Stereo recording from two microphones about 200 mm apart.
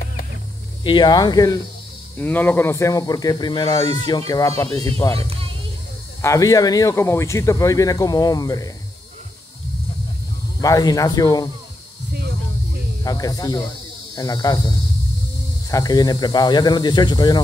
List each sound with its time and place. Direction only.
0.8 s speech: 20° left (ahead or behind)
5.1 s speech: 30° right (ahead or behind)
6.2 s speech: 15° left (ahead or behind)
10.6 s speech: 20° left (ahead or behind)
12.1 s snake: 55° right (ahead or behind)
13.0 s speech: 20° left (ahead or behind)